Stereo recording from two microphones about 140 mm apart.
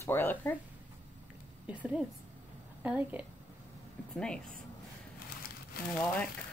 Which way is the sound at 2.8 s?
10° right (ahead or behind).